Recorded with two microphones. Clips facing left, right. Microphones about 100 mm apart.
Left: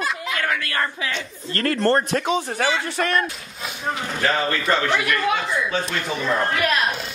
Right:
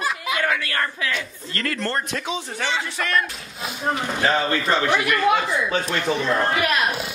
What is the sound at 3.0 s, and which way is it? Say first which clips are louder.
Speech: left 2 dB; 30° left (ahead or behind).